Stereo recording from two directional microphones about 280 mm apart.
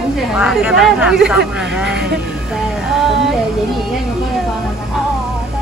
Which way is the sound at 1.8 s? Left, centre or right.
Right.